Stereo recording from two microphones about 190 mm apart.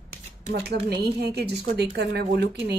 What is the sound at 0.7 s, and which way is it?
Speech, 60° right (ahead or behind).